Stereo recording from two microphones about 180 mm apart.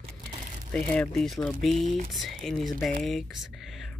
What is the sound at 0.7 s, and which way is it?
Speech, 5° left (ahead or behind).